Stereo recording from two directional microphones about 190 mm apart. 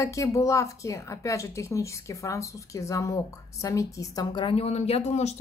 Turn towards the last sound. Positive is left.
turn(degrees=35)  # may be behind; listen again after turning